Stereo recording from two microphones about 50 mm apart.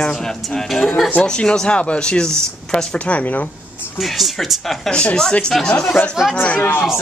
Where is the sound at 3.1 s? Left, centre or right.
Left.